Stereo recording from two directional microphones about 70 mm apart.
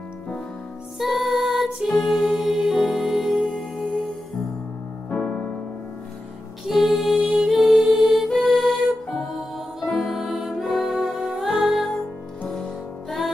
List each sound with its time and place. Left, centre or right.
0.9 s music: centre
5.1 s keyboard: left
6.7 s music: centre